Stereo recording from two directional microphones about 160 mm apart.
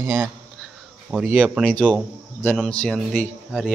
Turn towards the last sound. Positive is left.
turn(degrees=0)  # may be behind; listen again after turning